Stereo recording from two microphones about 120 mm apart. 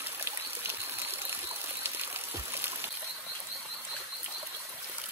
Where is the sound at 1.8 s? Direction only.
20° right (ahead or behind).